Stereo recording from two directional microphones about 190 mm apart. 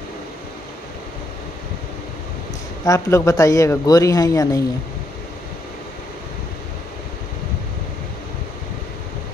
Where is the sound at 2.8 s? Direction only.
15° left (ahead or behind).